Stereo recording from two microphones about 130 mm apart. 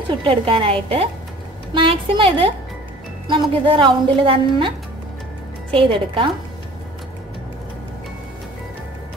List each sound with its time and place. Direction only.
0.2 s a woman's voice: 45° right (ahead or behind)